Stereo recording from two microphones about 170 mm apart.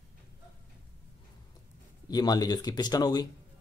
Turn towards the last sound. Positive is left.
turn(degrees=25)  # may be behind; listen again after turning